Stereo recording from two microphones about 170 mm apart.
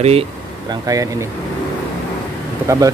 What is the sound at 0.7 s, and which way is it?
Speech, 20° right (ahead or behind).